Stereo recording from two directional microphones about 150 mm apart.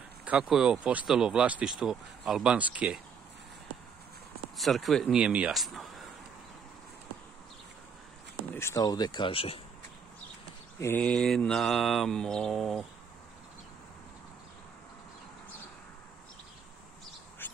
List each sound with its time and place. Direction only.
0.2 s speech: 5° right (ahead or behind)
4.6 s speech: centre (ahead or behind)
8.5 s speech: 20° left (ahead or behind); by 9.6 s 35° left (ahead or behind)
11.0 s speech: 5° left (ahead or behind)
17.4 s bird: 15° left (ahead or behind)